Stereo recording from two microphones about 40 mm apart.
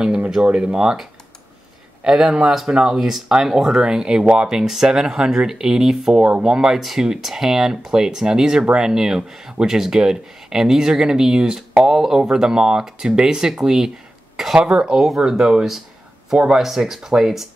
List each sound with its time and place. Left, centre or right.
0.4 s speech: right
2.0 s speech: centre
3.0 s speech: centre
14.6 s speech: right
15.0 s speech: centre
16.5 s speech: centre